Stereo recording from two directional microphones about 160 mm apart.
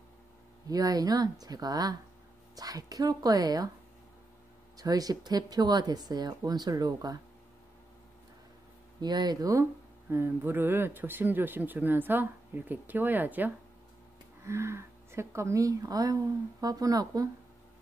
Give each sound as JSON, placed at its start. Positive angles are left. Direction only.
{"t": 0.7, "sound": "speech", "side_deg": -25}
{"t": 4.7, "sound": "speech", "side_deg": -25}
{"t": 9.0, "sound": "speech", "side_deg": -25}